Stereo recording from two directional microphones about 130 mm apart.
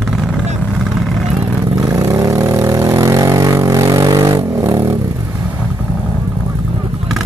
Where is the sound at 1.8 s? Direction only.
25° right (ahead or behind).